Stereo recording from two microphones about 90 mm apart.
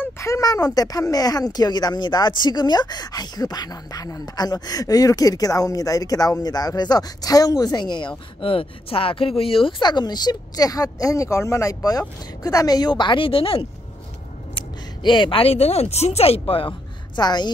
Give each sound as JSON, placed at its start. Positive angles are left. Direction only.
{"t": 0.0, "sound": "speech", "side_deg": 35}
{"t": 8.4, "sound": "speech", "side_deg": 85}
{"t": 15.0, "sound": "a woman's voice", "side_deg": 60}
{"t": 17.2, "sound": "speech", "side_deg": 50}